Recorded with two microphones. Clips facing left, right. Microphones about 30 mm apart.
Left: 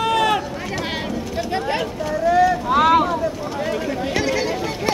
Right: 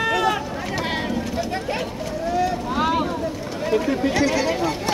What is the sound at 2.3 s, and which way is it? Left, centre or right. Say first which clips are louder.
Boat: left 7 dB; left.